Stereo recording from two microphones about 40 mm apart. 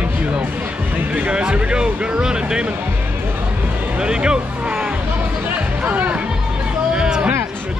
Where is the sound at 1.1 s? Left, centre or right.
Right.